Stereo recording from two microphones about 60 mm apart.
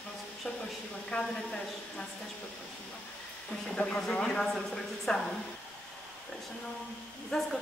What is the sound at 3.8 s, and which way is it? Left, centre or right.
A woman's voice, centre.